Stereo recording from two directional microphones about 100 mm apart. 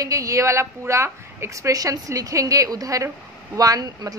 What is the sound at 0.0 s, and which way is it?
A woman's voice, 35° right (ahead or behind).